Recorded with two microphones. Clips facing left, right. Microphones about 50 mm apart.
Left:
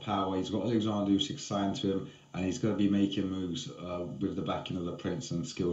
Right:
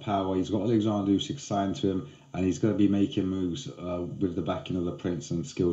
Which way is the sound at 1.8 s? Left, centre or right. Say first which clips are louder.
Right 4 dB; centre.